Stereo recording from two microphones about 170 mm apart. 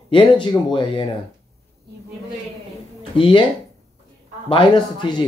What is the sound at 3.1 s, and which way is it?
Speech, 30° left (ahead or behind).